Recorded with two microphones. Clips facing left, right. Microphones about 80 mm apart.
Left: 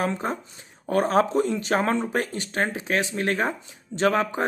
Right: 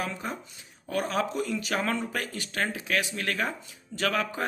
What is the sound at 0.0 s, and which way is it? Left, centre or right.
Speech, left.